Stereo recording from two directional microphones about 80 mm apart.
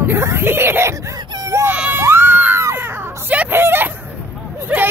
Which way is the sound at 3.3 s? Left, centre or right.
Right.